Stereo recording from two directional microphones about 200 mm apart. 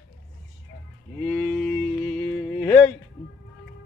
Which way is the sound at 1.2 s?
5° left (ahead or behind).